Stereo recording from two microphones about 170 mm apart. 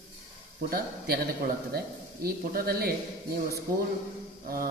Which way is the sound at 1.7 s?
65° right (ahead or behind).